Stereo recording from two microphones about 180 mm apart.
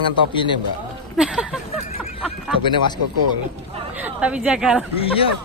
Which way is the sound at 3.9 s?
10° right (ahead or behind).